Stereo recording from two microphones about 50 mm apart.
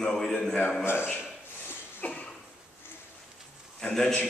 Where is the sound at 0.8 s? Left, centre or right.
Left.